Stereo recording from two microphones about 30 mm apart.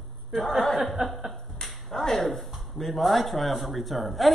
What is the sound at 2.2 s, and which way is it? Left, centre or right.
Speech, centre.